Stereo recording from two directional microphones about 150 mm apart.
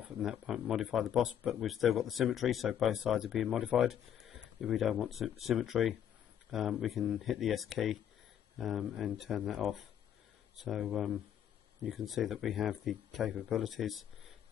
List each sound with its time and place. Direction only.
0.2 s speech: 5° right (ahead or behind)